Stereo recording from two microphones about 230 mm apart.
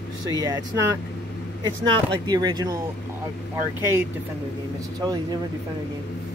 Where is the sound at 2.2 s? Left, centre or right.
Centre.